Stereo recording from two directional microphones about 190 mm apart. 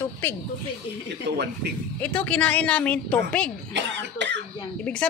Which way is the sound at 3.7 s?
65° right (ahead or behind).